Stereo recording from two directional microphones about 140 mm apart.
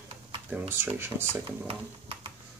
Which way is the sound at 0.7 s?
15° right (ahead or behind).